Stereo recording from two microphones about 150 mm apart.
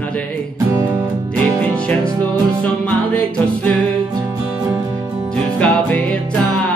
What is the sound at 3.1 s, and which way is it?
Music, 5° left (ahead or behind).